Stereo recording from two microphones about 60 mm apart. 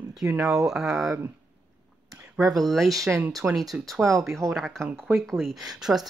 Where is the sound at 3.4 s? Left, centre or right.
Right.